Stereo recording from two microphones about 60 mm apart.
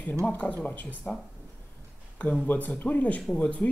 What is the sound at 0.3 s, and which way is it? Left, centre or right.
Speech, left.